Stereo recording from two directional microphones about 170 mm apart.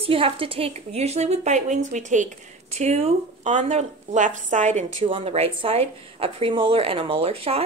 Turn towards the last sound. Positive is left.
turn(degrees=-35)  # may be behind; listen again after turning